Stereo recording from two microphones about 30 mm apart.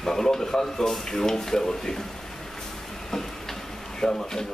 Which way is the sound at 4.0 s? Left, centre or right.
Centre.